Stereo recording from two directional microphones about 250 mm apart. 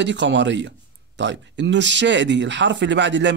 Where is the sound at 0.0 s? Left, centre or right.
Right.